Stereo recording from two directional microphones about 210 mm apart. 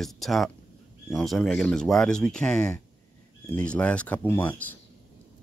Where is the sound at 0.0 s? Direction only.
Centre (ahead or behind).